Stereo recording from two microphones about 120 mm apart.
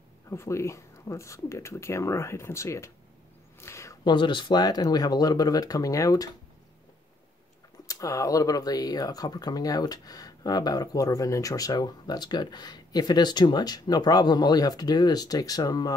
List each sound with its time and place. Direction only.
0.3 s speech: 25° left (ahead or behind)
4.0 s speech: 40° left (ahead or behind)
7.9 s speech: 30° left (ahead or behind)